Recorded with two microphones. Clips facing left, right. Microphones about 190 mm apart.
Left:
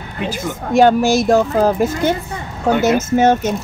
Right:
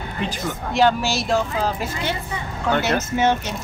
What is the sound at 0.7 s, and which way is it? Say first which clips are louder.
Speech: left 8 dB; 50° left (ahead or behind).